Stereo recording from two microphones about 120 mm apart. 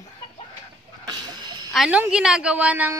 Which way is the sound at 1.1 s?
35° right (ahead or behind).